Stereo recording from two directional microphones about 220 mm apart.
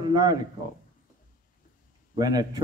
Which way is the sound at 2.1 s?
15° right (ahead or behind).